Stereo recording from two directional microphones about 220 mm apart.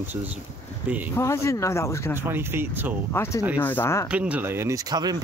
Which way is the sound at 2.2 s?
10° right (ahead or behind).